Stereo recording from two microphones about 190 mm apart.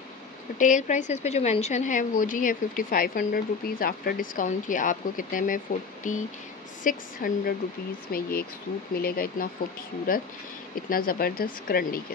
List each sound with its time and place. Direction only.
0.6 s a woman's voice: 40° left (ahead or behind)